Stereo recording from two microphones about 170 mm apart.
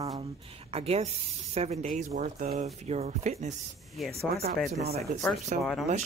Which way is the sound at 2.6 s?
40° right (ahead or behind).